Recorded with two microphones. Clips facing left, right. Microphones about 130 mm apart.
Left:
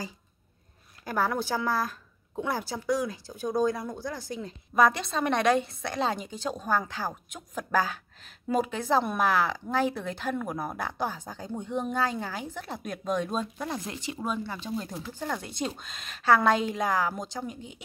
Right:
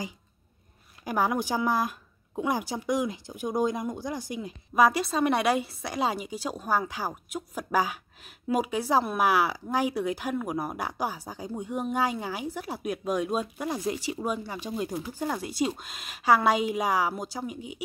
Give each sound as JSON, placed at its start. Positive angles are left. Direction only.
{"t": 1.0, "sound": "speech", "side_deg": -15}